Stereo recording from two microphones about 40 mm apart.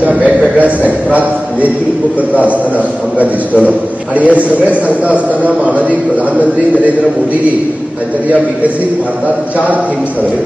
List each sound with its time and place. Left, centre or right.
0.0 s a man's voice: right
3.2 s a man's voice: right